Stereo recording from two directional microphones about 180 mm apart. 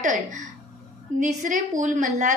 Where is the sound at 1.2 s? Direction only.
45° right (ahead or behind).